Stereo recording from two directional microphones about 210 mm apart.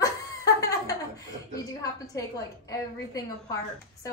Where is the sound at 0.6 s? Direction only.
15° left (ahead or behind).